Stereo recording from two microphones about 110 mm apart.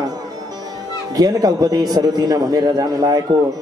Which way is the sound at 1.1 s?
35° right (ahead or behind).